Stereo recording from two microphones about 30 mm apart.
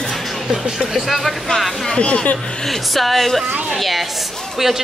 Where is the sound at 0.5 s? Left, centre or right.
Centre.